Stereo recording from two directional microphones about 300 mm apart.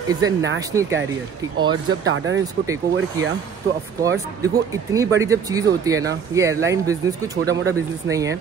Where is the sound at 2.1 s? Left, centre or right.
Right.